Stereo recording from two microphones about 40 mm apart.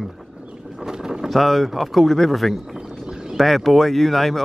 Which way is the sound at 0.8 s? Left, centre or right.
Centre.